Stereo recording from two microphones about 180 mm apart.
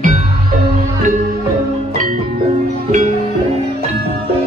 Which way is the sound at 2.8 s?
40° right (ahead or behind).